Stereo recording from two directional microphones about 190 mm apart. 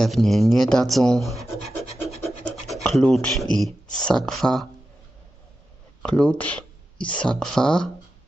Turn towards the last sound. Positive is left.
turn(degrees=5)  # may be behind; listen again after turning